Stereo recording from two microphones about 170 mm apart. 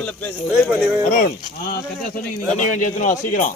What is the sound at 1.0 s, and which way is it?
Speech, 55° left (ahead or behind).